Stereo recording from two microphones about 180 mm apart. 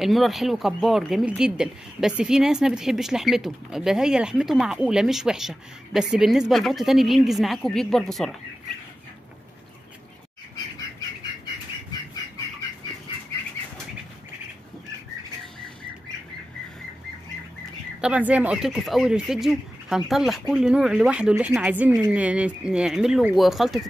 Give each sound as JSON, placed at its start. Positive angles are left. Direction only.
{"t": 0.0, "sound": "speech", "side_deg": 0}
{"t": 18.0, "sound": "speech", "side_deg": -5}